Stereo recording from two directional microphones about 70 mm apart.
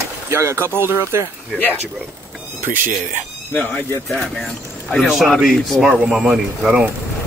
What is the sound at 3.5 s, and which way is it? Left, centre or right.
Speech, left.